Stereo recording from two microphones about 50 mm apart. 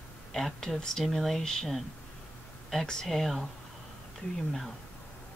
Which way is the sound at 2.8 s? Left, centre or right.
Centre.